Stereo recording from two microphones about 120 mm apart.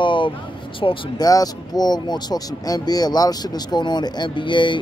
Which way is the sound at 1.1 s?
30° left (ahead or behind).